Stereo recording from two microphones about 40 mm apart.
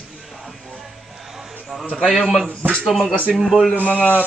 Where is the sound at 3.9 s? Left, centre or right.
Left.